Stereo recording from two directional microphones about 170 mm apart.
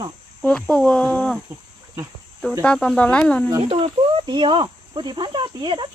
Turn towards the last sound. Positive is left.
turn(degrees=-25)  # may be behind; listen again after turning